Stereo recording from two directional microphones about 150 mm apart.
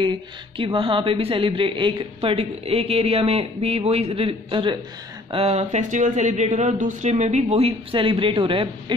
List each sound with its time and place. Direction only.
0.6 s a woman's voice: 35° right (ahead or behind)